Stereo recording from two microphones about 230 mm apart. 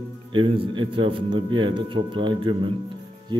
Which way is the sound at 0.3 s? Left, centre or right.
Right.